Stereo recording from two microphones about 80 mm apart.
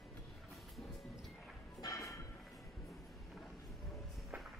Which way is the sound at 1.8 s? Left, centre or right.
Left.